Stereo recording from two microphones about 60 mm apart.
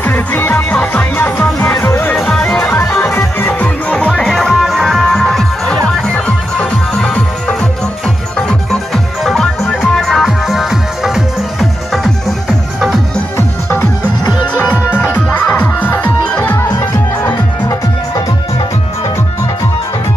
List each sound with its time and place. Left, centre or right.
0.0 s music: left
1.1 s music: left
2.1 s music: centre
2.5 s music: left
3.6 s music: centre
13.4 s music: left
14.6 s music: left
15.0 s music: left